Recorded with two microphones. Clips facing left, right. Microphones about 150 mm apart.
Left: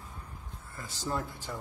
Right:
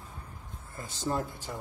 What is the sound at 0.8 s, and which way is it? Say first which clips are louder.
Speech: right 3 dB; 25° right (ahead or behind).